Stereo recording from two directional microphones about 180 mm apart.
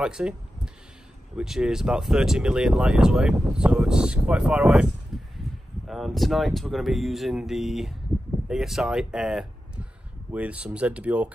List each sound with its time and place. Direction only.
0.0 s speech: 5° right (ahead or behind)
1.3 s speech: 5° right (ahead or behind)